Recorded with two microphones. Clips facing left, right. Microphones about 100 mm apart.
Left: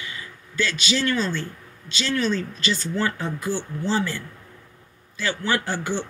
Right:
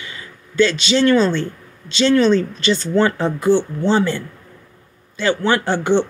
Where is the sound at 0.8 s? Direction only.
70° right (ahead or behind).